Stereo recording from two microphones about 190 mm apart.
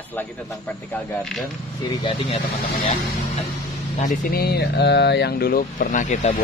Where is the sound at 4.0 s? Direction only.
50° left (ahead or behind).